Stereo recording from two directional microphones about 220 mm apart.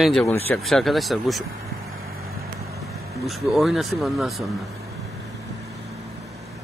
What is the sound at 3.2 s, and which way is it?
Speech, centre (ahead or behind).